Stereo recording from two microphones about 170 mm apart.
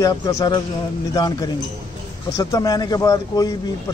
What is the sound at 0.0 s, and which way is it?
A man's voice, 20° left (ahead or behind).